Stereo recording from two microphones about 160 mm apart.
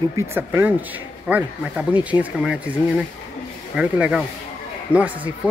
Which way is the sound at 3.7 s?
5° right (ahead or behind).